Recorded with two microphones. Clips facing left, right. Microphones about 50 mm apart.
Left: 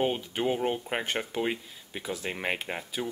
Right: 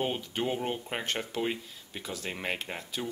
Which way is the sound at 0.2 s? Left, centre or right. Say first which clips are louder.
Left 3 dB; centre.